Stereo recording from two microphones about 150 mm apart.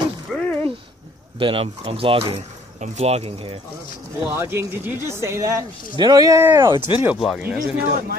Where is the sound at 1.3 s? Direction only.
35° right (ahead or behind).